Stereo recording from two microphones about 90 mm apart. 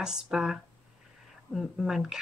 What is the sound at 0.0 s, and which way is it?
Speech, 5° right (ahead or behind).